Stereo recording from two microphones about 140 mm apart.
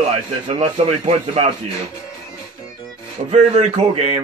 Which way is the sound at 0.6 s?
50° right (ahead or behind).